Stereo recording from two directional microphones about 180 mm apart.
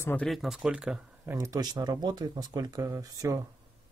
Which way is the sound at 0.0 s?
10° left (ahead or behind).